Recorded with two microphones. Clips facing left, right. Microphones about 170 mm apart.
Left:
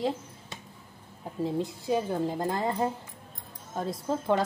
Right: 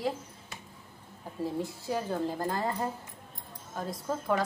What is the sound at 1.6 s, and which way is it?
A woman's voice, 20° left (ahead or behind).